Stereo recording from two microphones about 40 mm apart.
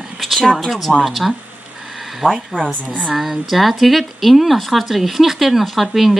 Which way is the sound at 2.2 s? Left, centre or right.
Right.